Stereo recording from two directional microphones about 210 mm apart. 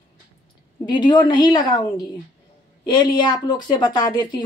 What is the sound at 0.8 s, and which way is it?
Speech, 20° left (ahead or behind).